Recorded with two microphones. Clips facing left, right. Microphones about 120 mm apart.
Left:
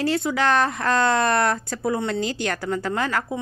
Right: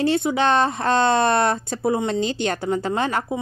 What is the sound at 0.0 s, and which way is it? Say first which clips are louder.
Speech: right 2 dB; 20° right (ahead or behind).